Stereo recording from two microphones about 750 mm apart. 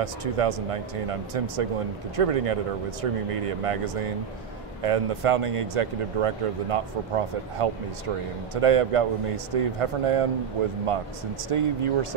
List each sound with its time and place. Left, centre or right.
0.0 s speech: right
11.4 s speech: right